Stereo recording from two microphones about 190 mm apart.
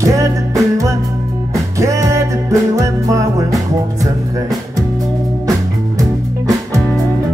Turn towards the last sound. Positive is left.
turn(degrees=-20)  # may be behind; listen again after turning